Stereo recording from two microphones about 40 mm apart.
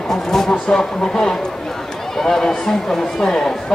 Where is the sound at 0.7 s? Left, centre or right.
Centre.